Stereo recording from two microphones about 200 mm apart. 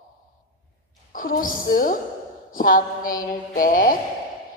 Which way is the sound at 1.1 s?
45° left (ahead or behind).